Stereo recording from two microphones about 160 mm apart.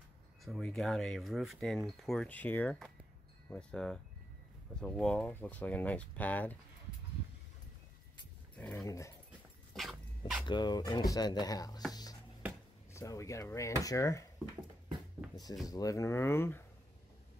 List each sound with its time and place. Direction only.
0.5 s speech: 5° left (ahead or behind)
8.7 s speech: 20° left (ahead or behind)
9.8 s dog: centre (ahead or behind)
10.4 s speech: 30° left (ahead or behind)
11.9 s music: 25° left (ahead or behind)
12.9 s speech: 20° left (ahead or behind)
15.6 s speech: 20° left (ahead or behind)